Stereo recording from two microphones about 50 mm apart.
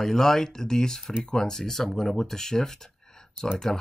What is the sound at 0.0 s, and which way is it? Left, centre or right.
Speech, centre.